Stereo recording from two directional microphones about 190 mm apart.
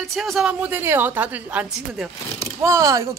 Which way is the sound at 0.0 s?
Centre (ahead or behind).